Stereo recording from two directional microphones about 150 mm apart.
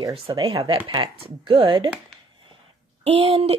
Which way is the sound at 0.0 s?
30° right (ahead or behind).